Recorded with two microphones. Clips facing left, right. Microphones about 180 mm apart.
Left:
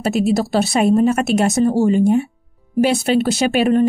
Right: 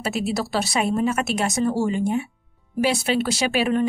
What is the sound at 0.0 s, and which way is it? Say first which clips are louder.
Speech: left 8 dB; 50° left (ahead or behind).